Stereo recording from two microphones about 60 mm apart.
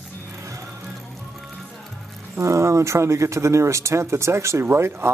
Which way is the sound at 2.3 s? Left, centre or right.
Right.